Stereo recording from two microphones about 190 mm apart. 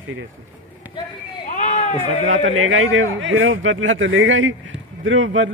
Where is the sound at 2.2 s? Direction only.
90° right.